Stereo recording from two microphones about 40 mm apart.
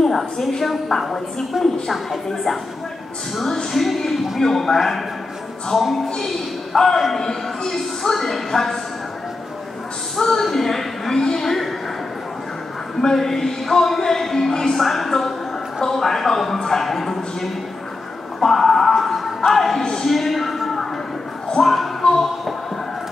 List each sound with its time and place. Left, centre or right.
0.0 s speech: centre
3.7 s speech: centre
6.0 s speech: centre
6.7 s speech: centre
10.1 s speech: centre
13.0 s speech: centre
18.4 s music: centre
19.8 s speech: centre
20.1 s speech: centre
22.0 s speech: centre